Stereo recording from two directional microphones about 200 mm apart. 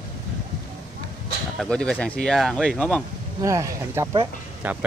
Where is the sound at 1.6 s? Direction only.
5° left (ahead or behind).